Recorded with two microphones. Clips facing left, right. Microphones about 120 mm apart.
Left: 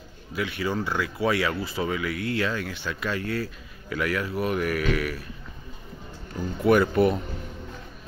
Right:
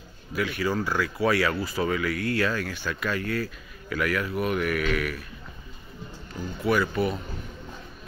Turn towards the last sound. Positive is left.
turn(degrees=55)  # may be behind; listen again after turning